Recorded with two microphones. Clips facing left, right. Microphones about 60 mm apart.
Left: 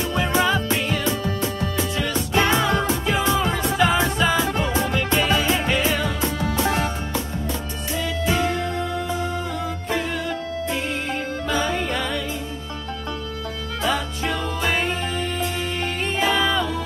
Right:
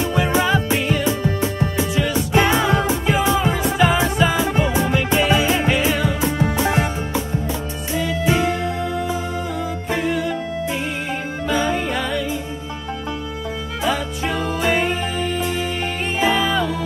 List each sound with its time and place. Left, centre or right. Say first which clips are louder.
0.0 s music: right 2 dB; centre
6.3 s music: right 4 dB; right
7.9 s music: right 4 dB; centre
13.8 s music: right 2 dB; centre